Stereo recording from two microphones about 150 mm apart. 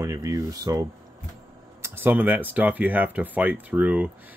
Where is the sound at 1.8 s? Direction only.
15° right (ahead or behind).